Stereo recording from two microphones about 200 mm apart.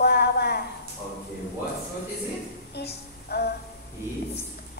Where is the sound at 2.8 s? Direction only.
55° left (ahead or behind).